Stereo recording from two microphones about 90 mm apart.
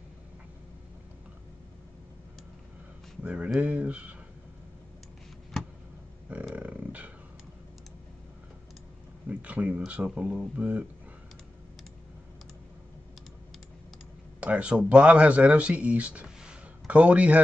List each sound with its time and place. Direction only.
3.2 s speech: 15° right (ahead or behind)
6.5 s a sound: 15° right (ahead or behind)
9.3 s speech: 15° right (ahead or behind)
14.4 s speech: 15° right (ahead or behind)